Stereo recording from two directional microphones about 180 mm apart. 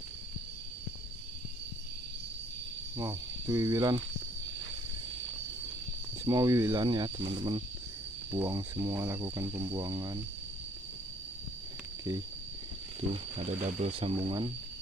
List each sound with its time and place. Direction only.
3.0 s speech: 20° right (ahead or behind)
6.2 s speech: 20° right (ahead or behind)
13.1 s speech: 30° right (ahead or behind)